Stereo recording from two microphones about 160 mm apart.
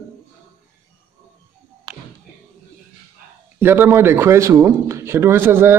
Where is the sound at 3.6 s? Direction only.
15° right (ahead or behind).